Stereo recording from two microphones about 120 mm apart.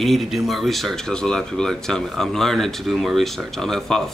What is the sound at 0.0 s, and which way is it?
Speech, centre (ahead or behind).